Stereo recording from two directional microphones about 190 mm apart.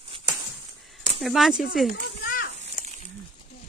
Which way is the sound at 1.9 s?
50° left (ahead or behind).